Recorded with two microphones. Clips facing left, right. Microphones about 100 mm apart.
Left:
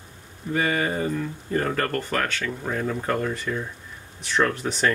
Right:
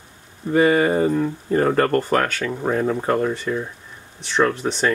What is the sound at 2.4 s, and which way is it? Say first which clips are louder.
Speech: right 6 dB; 30° right (ahead or behind).